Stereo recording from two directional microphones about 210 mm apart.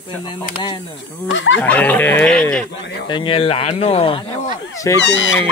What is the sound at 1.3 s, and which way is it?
Speech, 60° left (ahead or behind).